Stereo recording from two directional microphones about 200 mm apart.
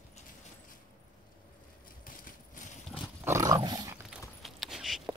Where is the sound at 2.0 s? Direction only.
40° left (ahead or behind).